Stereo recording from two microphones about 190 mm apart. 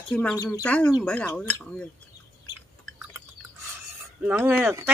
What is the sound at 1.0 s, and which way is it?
Speech, 5° left (ahead or behind).